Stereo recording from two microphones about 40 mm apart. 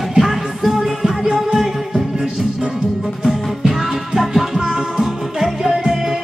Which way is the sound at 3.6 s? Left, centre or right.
Centre.